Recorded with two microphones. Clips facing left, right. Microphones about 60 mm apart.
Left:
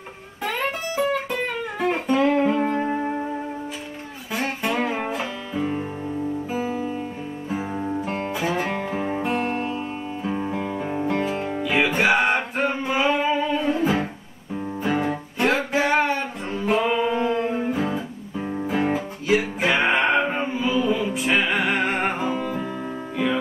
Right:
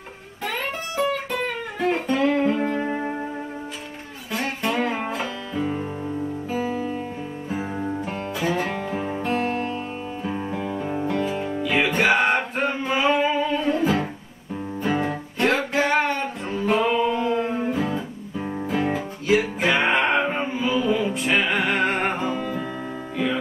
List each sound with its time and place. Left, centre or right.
0.9 s music: centre
4.3 s music: centre
6.5 s music: centre
7.7 s music: centre
8.3 s music: centre; by 9.2 s left
9.2 s music: centre
11.6 s music: centre
16.6 s singing: centre
17.9 s music: centre
18.7 s music: centre